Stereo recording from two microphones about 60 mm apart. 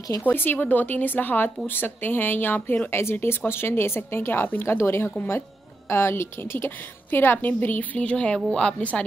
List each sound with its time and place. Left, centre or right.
0.2 s a woman's voice: left; by 9.0 s centre